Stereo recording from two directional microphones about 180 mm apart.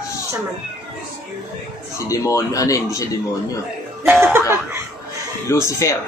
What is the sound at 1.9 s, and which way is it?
Speech, 20° left (ahead or behind).